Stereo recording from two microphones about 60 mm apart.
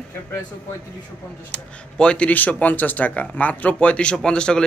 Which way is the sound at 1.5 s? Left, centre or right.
Centre.